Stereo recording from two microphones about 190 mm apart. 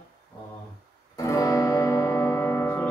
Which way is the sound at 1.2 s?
15° left (ahead or behind).